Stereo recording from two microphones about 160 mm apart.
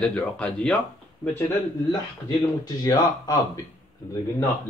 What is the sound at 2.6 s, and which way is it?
Speech, 25° left (ahead or behind).